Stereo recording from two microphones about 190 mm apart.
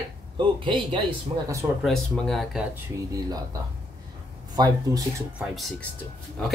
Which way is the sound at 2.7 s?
20° right (ahead or behind).